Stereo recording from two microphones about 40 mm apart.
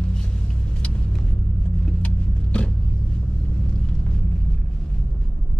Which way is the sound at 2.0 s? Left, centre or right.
Left.